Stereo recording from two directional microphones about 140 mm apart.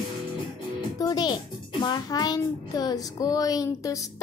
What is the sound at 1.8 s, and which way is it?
A child's voice, 30° left (ahead or behind).